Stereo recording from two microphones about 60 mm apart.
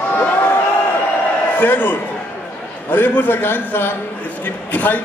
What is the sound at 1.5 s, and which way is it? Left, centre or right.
A man's voice, left.